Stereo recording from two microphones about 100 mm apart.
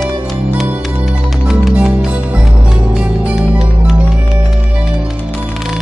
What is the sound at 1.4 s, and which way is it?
Music, 5° right (ahead or behind).